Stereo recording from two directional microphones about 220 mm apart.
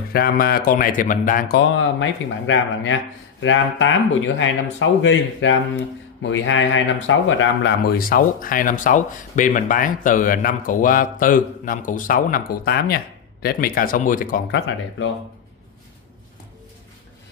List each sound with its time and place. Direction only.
0.1 s speech: 45° left (ahead or behind)
1.8 s speech: 60° left (ahead or behind); by 14.4 s 40° left (ahead or behind)